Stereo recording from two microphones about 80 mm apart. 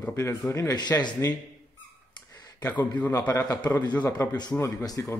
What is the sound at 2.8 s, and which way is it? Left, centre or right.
Speech, left.